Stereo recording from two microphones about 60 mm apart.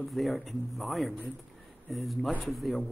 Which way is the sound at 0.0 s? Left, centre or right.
Centre.